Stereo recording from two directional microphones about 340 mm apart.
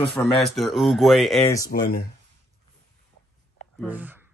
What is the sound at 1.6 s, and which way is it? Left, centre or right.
Speech, left.